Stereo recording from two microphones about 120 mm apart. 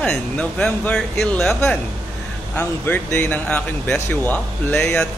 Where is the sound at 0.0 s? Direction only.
5° left (ahead or behind).